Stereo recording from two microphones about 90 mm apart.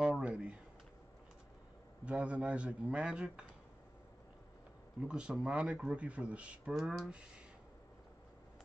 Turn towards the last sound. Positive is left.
turn(degrees=-10)  # may be behind; listen again after turning